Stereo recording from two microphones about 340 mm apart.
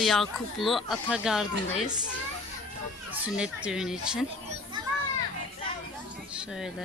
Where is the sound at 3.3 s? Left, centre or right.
Centre.